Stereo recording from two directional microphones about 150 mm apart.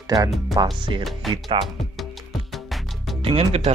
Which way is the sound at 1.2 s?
Centre (ahead or behind).